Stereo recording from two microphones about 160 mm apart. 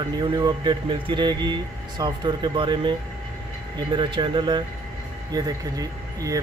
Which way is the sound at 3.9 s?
30° right (ahead or behind).